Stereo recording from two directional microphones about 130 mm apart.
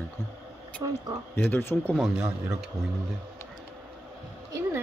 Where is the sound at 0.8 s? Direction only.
35° right (ahead or behind).